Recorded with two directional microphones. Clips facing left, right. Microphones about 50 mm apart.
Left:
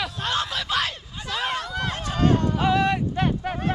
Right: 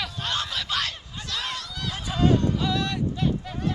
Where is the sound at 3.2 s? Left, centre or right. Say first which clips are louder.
Left 3 dB; left.